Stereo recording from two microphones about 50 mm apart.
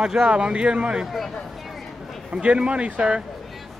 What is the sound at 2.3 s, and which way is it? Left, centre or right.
Speech, right.